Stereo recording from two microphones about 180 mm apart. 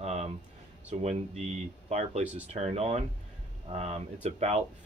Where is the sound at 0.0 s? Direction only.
40° right (ahead or behind).